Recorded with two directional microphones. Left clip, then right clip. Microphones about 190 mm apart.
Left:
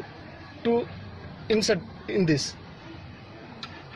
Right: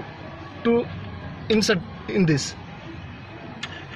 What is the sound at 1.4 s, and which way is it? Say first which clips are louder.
Speech: right 3 dB; 25° left (ahead or behind).